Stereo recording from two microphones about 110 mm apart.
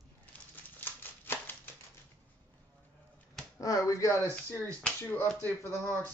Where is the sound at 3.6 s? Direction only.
35° left (ahead or behind).